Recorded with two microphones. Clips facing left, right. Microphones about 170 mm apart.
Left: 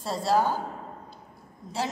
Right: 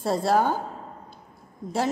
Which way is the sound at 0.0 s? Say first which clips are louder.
Right 3 dB; 60° right (ahead or behind).